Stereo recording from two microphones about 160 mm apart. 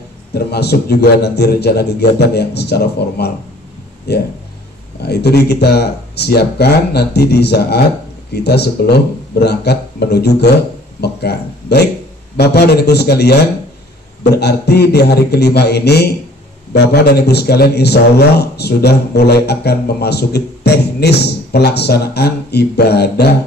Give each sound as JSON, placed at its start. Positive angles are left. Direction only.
{"t": 0.3, "sound": "a man's voice", "side_deg": 90}